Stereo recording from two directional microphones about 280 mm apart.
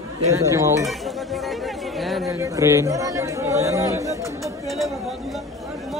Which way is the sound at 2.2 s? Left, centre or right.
Centre.